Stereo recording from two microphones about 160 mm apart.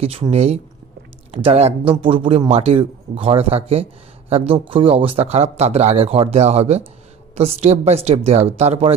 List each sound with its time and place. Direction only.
0.0 s a man's voice: 35° right (ahead or behind)